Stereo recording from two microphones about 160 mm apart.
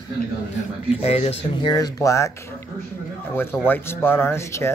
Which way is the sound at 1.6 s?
25° left (ahead or behind).